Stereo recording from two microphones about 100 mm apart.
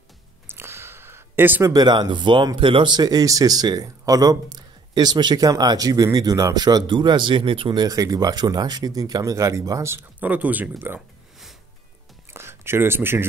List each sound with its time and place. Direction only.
0.5 s a sound: 25° right (ahead or behind)
1.6 s speech: 40° right (ahead or behind); by 7.8 s 60° right (ahead or behind)
7.8 s speech: 40° right (ahead or behind)
10.2 s speech: 15° right (ahead or behind)
12.3 s speech: 25° right (ahead or behind)